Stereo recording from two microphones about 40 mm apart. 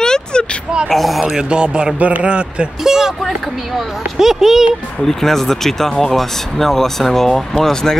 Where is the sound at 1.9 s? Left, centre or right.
Right.